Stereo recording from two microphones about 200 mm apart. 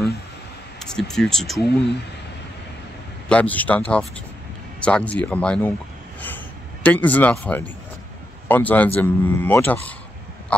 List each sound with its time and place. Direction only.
0.7 s speech: 5° left (ahead or behind)
3.3 s speech: 5° left (ahead or behind)
6.2 s a sound: 10° left (ahead or behind)
8.5 s speech: 10° left (ahead or behind)